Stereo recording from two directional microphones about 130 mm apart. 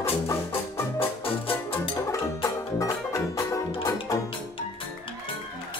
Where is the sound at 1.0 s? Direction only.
45° left (ahead or behind).